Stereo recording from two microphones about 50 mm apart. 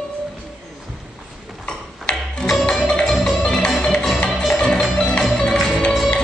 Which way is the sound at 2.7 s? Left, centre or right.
Centre.